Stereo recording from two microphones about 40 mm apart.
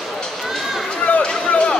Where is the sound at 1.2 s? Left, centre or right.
Left.